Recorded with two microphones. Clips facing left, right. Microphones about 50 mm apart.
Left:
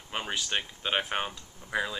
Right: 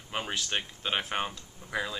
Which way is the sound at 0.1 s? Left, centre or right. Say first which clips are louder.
Left 1 dB; centre.